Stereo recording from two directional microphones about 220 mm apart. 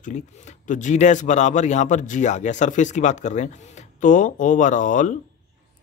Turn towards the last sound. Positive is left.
turn(degrees=35)  # may be behind; listen again after turning